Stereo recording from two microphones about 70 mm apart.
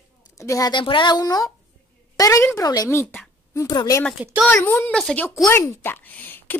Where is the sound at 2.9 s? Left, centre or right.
Left.